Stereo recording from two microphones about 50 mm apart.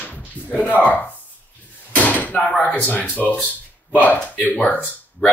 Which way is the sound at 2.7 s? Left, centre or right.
Left.